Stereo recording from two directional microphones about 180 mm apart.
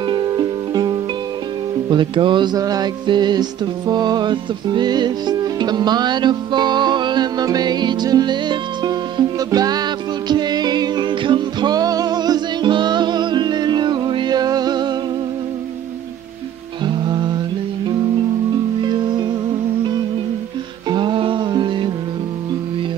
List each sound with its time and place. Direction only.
0.0 s music: 25° right (ahead or behind)
16.8 s music: 25° right (ahead or behind)
18.8 s music: 25° right (ahead or behind)
20.9 s music: 25° right (ahead or behind)